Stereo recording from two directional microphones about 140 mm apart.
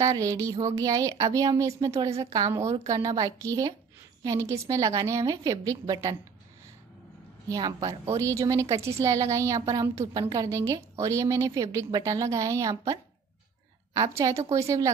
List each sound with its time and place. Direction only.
0.0 s a woman's voice: 25° right (ahead or behind)
7.4 s a woman's voice: 25° right (ahead or behind)
14.5 s a woman's voice: 20° right (ahead or behind)